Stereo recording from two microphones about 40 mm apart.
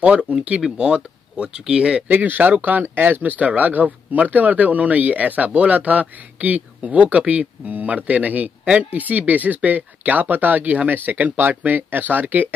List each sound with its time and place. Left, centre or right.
0.0 s speech: right
2.0 s speech: right
2.8 s speech: right
3.2 s speech: right